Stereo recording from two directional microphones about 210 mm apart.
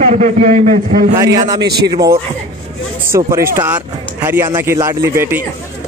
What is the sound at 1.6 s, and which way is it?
Speech, 50° right (ahead or behind).